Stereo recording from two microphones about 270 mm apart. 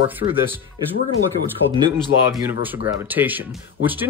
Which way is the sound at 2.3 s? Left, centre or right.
Centre.